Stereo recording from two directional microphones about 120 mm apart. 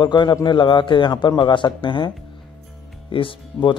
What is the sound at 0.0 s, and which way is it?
A man's voice, 40° left (ahead or behind).